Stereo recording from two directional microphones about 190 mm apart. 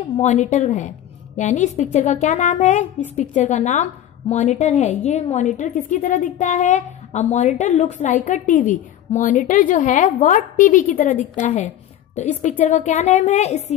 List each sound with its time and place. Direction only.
0.2 s a woman's voice: 40° left (ahead or behind)